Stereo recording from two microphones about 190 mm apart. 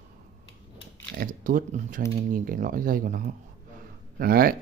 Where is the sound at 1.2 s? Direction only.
45° right (ahead or behind).